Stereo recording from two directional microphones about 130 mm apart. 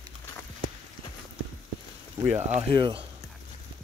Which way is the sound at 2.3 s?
55° right (ahead or behind).